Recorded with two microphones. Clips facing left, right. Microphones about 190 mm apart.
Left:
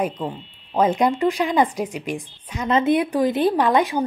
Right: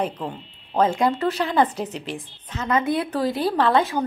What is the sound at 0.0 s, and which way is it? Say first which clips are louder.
A woman's voice: left 2 dB; 10° left (ahead or behind).